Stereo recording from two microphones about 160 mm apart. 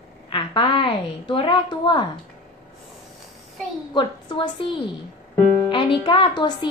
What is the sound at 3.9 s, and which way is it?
Speech, 30° left (ahead or behind).